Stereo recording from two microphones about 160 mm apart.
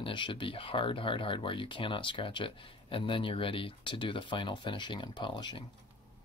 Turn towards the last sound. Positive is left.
turn(degrees=30)  # may be behind; listen again after turning